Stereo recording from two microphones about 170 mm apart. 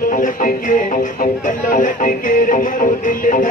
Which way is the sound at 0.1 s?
55° left (ahead or behind).